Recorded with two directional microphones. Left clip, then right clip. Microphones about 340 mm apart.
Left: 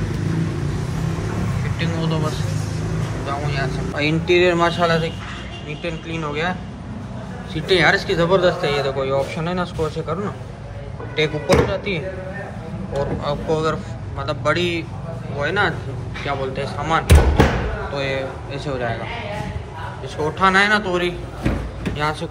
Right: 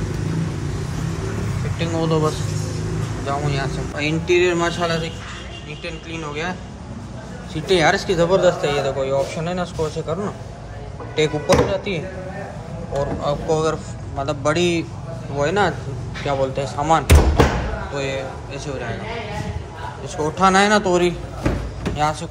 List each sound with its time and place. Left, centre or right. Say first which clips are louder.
1.8 s a sound: right 5 dB; right
3.3 s speech: right 1 dB; right
3.9 s speech: left 1 dB; centre
7.5 s speech: left 1 dB; centre
13.0 s speech: right 1 dB; centre
20.2 s speech: even; centre